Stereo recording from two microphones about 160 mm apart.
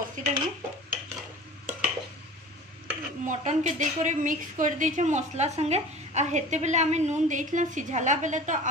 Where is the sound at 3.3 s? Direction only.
50° right (ahead or behind).